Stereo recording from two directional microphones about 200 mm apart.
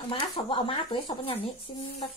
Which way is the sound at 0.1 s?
25° left (ahead or behind).